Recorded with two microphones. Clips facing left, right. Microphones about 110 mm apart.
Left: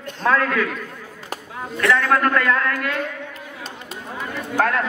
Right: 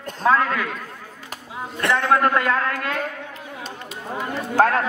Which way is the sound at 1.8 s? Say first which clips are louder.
Even; 25° right (ahead or behind).